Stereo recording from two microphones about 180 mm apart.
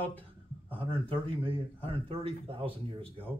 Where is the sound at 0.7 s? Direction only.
30° right (ahead or behind).